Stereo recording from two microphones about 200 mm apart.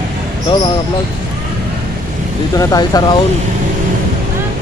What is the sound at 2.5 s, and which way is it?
Speech, 20° left (ahead or behind).